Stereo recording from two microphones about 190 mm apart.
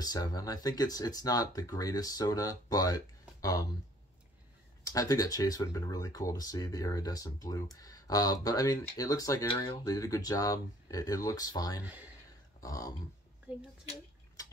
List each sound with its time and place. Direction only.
0.0 s speech: 20° left (ahead or behind)
4.8 s speech: 20° left (ahead or behind)
12.5 s a sound: 15° left (ahead or behind)